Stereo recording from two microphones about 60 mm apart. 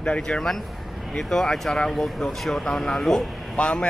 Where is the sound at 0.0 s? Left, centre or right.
Centre.